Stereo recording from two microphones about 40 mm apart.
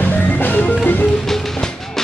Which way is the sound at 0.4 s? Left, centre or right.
Left.